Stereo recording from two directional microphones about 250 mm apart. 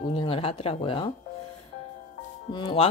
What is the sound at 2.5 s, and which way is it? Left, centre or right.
Speech, centre.